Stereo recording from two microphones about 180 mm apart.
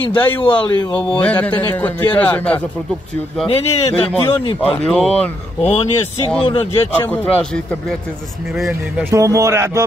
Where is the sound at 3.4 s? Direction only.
30° left (ahead or behind).